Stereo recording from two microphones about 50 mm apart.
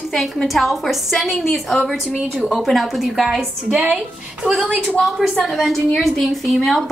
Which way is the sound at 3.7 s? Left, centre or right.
Centre.